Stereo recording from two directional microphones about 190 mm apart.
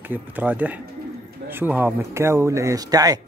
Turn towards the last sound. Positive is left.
turn(degrees=-20)  # may be behind; listen again after turning